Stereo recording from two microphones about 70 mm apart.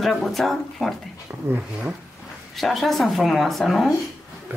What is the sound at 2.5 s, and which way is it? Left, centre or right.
Speech, centre.